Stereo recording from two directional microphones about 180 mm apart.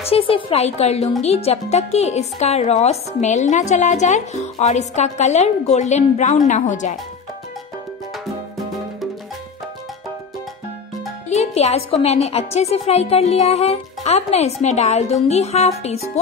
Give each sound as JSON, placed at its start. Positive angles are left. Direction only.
{"t": 0.0, "sound": "a woman's voice", "side_deg": 30}
{"t": 11.2, "sound": "a woman's voice", "side_deg": 35}